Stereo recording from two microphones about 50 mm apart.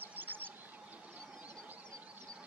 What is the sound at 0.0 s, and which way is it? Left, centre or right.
Bird, right.